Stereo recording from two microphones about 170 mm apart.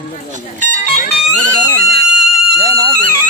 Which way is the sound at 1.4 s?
55° right (ahead or behind).